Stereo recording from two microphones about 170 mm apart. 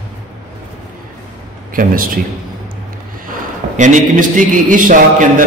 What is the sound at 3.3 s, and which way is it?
A man's voice, 45° right (ahead or behind).